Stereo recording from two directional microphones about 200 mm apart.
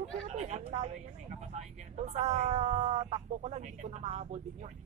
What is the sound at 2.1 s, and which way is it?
Speech, 35° right (ahead or behind).